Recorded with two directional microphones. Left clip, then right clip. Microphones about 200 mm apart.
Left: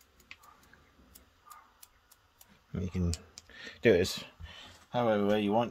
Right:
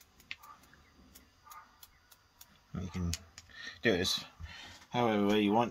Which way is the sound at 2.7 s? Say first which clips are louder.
Left 5 dB; 50° left (ahead or behind).